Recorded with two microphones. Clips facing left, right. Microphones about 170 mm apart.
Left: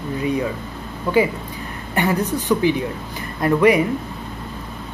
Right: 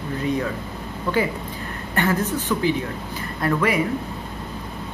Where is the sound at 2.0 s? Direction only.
15° left (ahead or behind).